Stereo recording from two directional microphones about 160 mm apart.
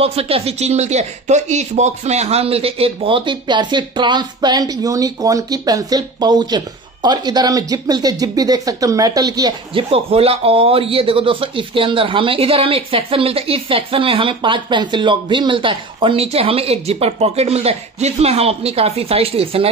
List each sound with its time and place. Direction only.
0.0 s speech: 40° right (ahead or behind)
9.8 s speech: 35° right (ahead or behind)